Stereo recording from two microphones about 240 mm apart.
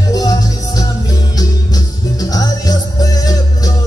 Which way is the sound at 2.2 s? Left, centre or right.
Centre.